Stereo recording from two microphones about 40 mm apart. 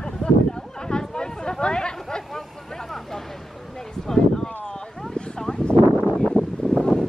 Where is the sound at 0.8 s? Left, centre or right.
Centre.